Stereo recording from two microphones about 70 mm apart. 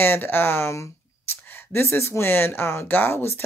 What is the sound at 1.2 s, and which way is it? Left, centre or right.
Speech, left.